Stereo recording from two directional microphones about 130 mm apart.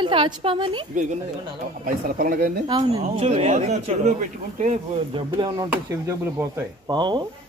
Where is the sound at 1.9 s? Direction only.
90° right.